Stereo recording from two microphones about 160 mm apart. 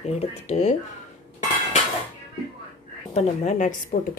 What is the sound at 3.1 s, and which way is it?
Speech, 50° left (ahead or behind).